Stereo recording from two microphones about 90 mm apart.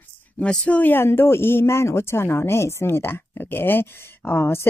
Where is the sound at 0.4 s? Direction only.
10° left (ahead or behind).